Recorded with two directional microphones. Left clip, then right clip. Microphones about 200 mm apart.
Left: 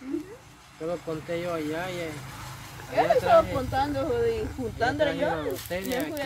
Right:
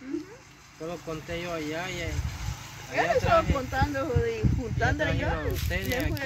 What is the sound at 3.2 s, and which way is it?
Speech, 15° right (ahead or behind).